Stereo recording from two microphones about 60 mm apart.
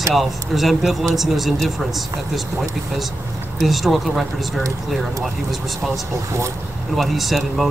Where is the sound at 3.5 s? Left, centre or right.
Centre.